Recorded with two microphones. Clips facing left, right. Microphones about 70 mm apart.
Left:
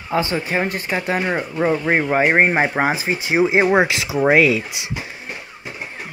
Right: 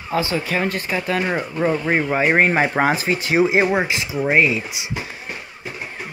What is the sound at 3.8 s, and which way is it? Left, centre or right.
Speech, left.